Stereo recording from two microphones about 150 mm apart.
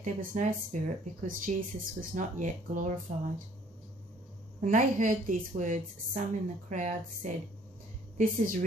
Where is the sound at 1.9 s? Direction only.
60° right (ahead or behind).